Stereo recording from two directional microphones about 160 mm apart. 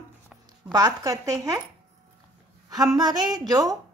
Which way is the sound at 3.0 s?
25° right (ahead or behind).